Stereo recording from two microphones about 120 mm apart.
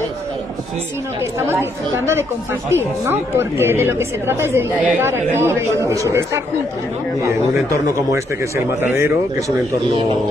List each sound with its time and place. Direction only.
1.2 s a woman's voice: 20° right (ahead or behind)